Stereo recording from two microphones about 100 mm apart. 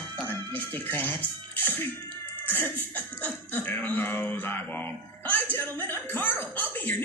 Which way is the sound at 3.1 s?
15° left (ahead or behind).